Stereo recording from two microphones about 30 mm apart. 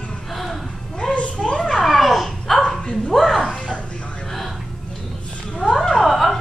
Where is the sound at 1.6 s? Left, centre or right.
Centre.